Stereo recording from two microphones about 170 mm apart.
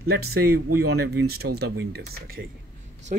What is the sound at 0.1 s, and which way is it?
Speech, 65° right (ahead or behind).